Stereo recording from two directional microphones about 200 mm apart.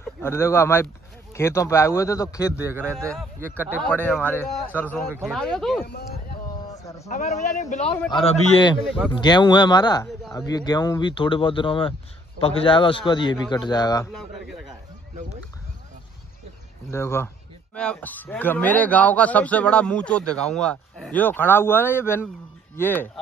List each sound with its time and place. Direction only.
0.2 s a man's voice: 10° left (ahead or behind)
2.5 s a man's voice: 10° right (ahead or behind)
4.1 s a man's voice: 10° left (ahead or behind)
5.9 s a sound: 50° left (ahead or behind)
6.7 s a sound: 15° left (ahead or behind)
7.1 s a man's voice: 35° left (ahead or behind); by 14.0 s 20° left (ahead or behind)
14.1 s speech: centre (ahead or behind)
16.9 s a man's voice: 10° left (ahead or behind)